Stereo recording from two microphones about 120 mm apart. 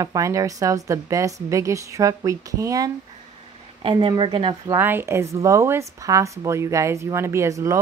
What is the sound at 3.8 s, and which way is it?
Speech, 40° right (ahead or behind).